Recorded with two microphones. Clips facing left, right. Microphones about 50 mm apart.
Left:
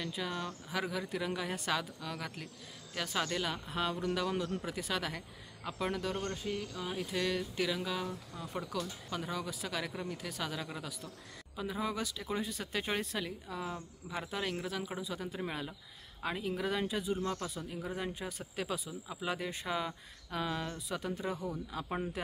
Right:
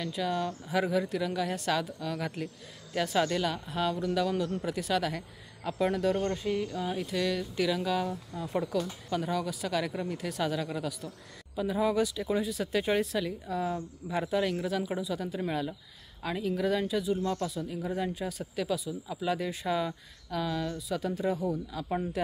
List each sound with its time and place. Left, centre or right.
0.0 s speech: centre
1.0 s speech: centre
6.2 s cricket: centre
6.8 s speech: centre
18.6 s speech: left
20.2 s speech: left
21.2 s speech: centre